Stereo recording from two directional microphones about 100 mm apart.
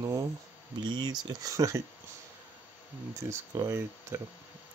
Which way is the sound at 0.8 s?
45° right (ahead or behind).